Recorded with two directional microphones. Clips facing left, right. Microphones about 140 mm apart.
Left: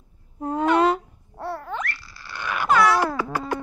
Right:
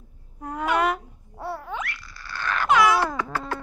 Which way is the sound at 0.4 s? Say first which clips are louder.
Left 5 dB; 30° left (ahead or behind).